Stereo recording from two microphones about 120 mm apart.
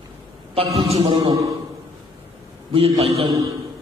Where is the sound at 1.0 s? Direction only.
35° right (ahead or behind).